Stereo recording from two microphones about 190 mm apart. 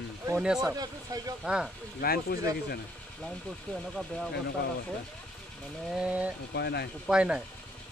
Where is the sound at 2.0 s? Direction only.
55° left (ahead or behind).